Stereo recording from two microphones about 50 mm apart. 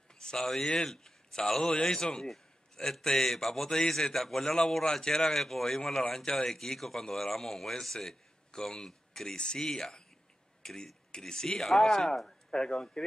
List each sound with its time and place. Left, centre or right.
0.2 s a man's voice: centre